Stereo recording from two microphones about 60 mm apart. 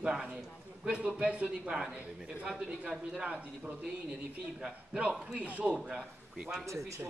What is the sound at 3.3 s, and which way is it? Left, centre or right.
Speech, right.